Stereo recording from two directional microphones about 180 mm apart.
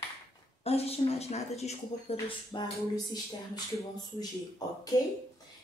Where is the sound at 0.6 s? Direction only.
35° left (ahead or behind).